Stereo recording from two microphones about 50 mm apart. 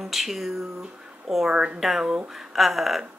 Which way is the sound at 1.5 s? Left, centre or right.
Centre.